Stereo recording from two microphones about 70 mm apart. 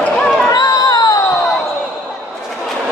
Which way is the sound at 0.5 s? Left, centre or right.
Left.